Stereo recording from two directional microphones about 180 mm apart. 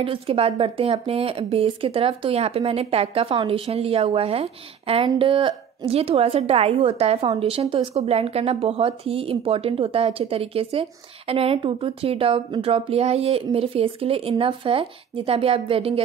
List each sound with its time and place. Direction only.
0.0 s speech: 30° right (ahead or behind)